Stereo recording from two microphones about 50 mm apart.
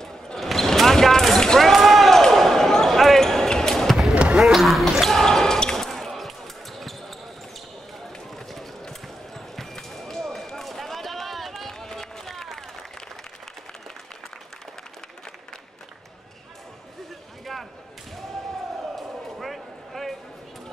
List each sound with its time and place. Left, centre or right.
0.0 s basketball bounce: centre
4.1 s basketball bounce: right
4.4 s a sound: centre
5.0 s basketball bounce: centre
8.4 s basketball bounce: centre
19.3 s a sound: centre